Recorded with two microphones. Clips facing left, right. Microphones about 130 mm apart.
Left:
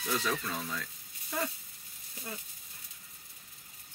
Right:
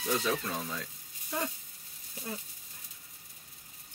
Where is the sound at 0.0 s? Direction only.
15° right (ahead or behind).